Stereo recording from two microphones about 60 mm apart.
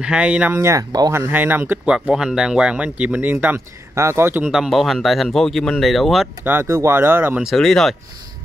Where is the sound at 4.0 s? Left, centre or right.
Right.